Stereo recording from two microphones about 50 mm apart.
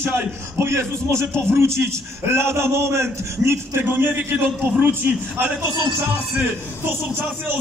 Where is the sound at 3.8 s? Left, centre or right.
Right.